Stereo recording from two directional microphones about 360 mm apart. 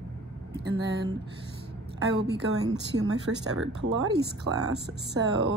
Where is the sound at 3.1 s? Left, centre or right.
Right.